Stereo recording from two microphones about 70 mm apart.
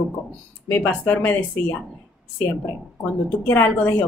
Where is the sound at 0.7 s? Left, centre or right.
Left.